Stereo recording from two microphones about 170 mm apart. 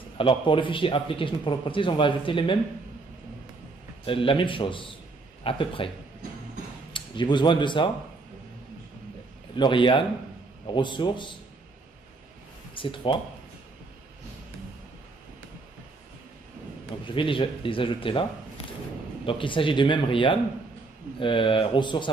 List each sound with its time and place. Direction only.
0.2 s a man's voice: 30° left (ahead or behind)
4.0 s a man's voice: 30° left (ahead or behind)
6.9 s speech: 25° left (ahead or behind)
9.6 s a man's voice: 30° left (ahead or behind)
12.7 s a man's voice: 30° left (ahead or behind)
17.1 s speech: 30° left (ahead or behind)
19.2 s a man's voice: 30° left (ahead or behind)